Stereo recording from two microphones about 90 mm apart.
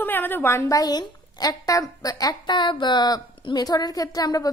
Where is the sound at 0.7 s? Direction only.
45° left (ahead or behind).